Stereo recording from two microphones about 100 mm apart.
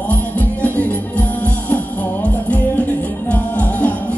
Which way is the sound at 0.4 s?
15° left (ahead or behind).